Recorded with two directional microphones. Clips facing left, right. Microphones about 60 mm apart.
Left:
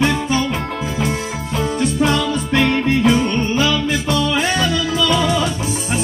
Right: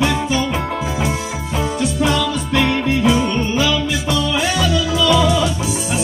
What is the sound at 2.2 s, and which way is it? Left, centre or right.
Music, left.